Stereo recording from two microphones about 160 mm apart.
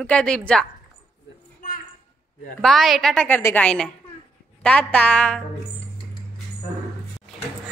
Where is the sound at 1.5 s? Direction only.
60° left (ahead or behind).